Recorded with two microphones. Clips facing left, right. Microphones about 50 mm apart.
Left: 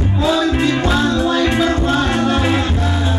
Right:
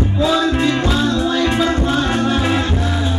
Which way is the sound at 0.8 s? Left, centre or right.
Centre.